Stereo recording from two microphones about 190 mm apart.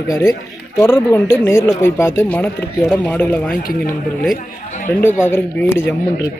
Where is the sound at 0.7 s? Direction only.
15° left (ahead or behind).